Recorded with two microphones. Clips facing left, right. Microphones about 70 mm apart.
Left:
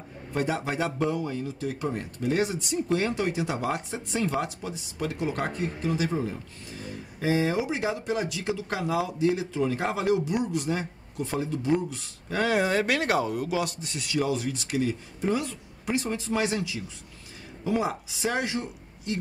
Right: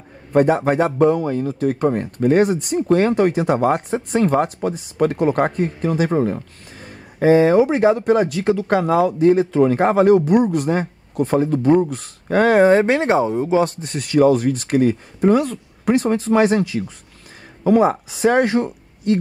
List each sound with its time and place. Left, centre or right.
0.3 s speech: right